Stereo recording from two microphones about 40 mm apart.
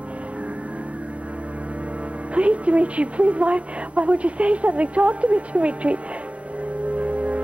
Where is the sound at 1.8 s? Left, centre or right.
Right.